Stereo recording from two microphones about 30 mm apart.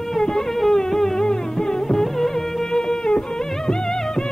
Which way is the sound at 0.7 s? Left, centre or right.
Centre.